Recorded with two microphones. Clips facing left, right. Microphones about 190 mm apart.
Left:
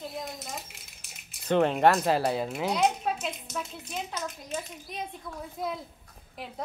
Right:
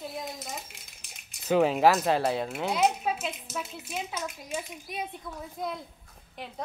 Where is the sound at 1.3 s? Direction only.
5° right (ahead or behind).